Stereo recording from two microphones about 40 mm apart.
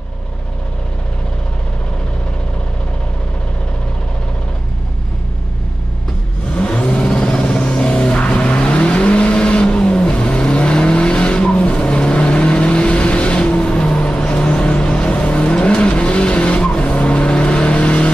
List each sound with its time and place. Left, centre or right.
6.5 s vehicle: left